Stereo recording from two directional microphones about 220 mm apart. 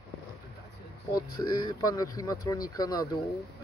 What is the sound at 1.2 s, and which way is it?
Speech, 20° left (ahead or behind).